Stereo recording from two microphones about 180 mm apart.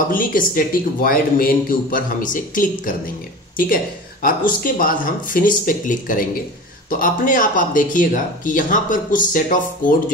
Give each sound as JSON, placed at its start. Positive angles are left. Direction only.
{"t": 0.1, "sound": "speech", "side_deg": 50}